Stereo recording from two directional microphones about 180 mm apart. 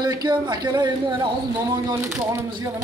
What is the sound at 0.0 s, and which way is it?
Speech, 25° right (ahead or behind).